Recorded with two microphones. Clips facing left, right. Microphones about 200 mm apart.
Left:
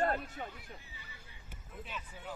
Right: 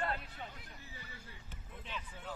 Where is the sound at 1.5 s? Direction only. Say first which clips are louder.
Left 3 dB; 5° left (ahead or behind).